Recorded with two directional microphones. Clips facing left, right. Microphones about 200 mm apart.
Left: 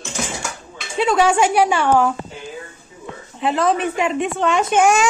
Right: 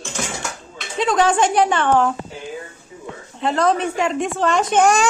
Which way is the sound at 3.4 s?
5° left (ahead or behind).